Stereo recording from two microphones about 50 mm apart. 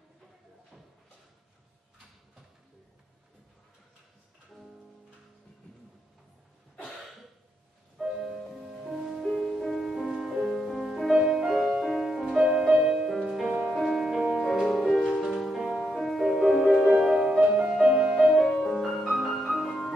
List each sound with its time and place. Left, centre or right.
8.0 s music: centre
14.4 s music: centre
18.1 s music: centre